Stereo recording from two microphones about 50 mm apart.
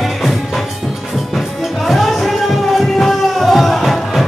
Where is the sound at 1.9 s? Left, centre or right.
Centre.